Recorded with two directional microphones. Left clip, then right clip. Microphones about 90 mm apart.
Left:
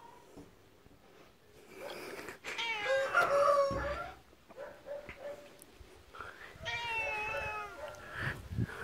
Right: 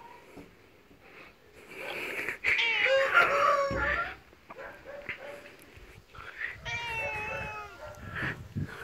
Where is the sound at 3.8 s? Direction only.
10° left (ahead or behind).